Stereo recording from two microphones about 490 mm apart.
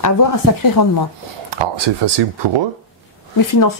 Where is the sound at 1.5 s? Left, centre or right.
Right.